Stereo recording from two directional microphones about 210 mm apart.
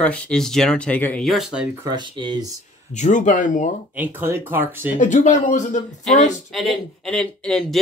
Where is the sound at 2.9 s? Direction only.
35° left (ahead or behind).